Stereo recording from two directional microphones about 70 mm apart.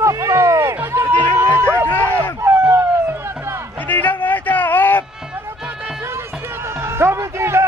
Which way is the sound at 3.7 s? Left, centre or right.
Left.